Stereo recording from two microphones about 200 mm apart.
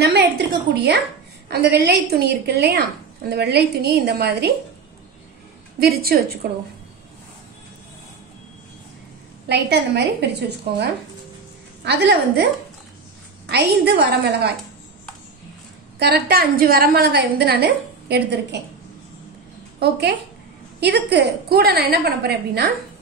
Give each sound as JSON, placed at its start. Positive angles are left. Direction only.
{"t": 0.0, "sound": "a sound", "side_deg": -55}
{"t": 1.5, "sound": "a woman's voice", "side_deg": -50}
{"t": 5.8, "sound": "a woman's voice", "side_deg": -50}
{"t": 9.5, "sound": "a woman's voice", "side_deg": -55}
{"t": 11.8, "sound": "a woman's voice", "side_deg": -55}
{"t": 13.5, "sound": "a woman's voice", "side_deg": -55}
{"t": 16.0, "sound": "a woman's voice", "side_deg": -50}
{"t": 19.8, "sound": "a woman's voice", "side_deg": -55}